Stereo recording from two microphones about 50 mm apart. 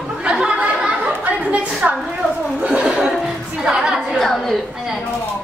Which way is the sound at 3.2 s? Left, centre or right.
Centre.